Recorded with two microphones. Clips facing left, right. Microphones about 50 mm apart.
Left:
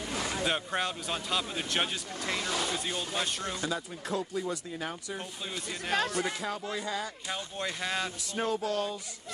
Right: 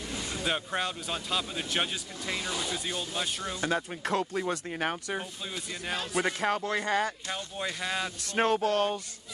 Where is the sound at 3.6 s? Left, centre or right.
Right.